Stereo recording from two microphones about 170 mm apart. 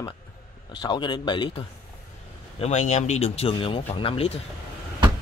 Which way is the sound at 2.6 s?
40° left (ahead or behind).